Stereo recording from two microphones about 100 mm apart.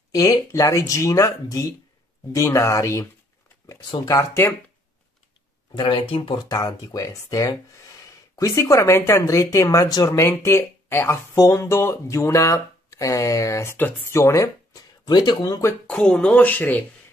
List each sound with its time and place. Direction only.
0.1 s speech: 35° left (ahead or behind)
5.8 s speech: 55° left (ahead or behind)
6.3 s speech: 35° left (ahead or behind)
15.9 s speech: 10° left (ahead or behind)